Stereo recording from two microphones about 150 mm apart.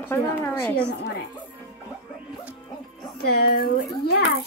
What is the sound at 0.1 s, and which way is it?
Speech, 15° left (ahead or behind).